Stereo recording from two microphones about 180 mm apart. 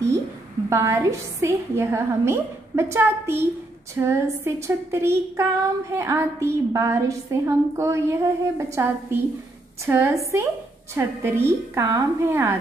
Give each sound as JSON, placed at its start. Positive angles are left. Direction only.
{"t": 0.7, "sound": "a woman's voice", "side_deg": -15}